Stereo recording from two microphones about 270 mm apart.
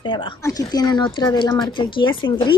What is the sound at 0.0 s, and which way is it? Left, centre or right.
Speech, centre.